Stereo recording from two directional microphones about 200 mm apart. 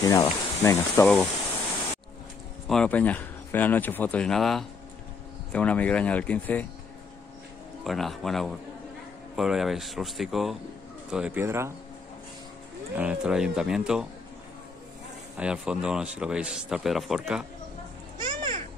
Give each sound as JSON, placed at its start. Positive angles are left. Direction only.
{"t": 0.0, "sound": "speech", "side_deg": 15}
{"t": 2.7, "sound": "speech", "side_deg": 5}
{"t": 7.8, "sound": "a man's voice", "side_deg": 0}
{"t": 12.9, "sound": "a man's voice", "side_deg": -5}
{"t": 15.3, "sound": "a man's voice", "side_deg": -5}
{"t": 18.1, "sound": "children playing", "side_deg": -20}